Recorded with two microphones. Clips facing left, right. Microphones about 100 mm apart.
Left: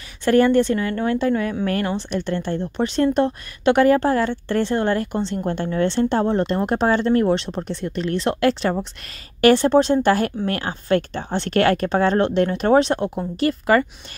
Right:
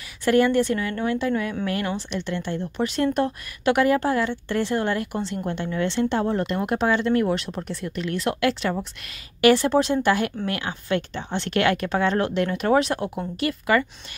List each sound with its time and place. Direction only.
0.2 s speech: 30° left (ahead or behind)